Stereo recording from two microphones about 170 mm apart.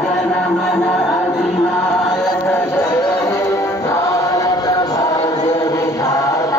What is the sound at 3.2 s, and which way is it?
Music, 20° left (ahead or behind).